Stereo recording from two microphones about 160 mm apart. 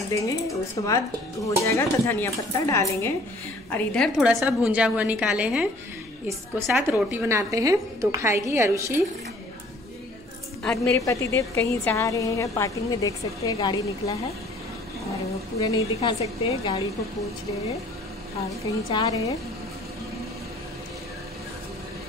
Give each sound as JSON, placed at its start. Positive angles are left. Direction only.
{"t": 0.1, "sound": "a woman's voice", "side_deg": 20}
{"t": 3.9, "sound": "a woman's voice", "side_deg": 0}
{"t": 10.6, "sound": "a woman's voice", "side_deg": 5}
{"t": 11.0, "sound": "a woman's voice", "side_deg": 20}
{"t": 16.0, "sound": "a woman's voice", "side_deg": 40}
{"t": 18.9, "sound": "a woman's voice", "side_deg": 25}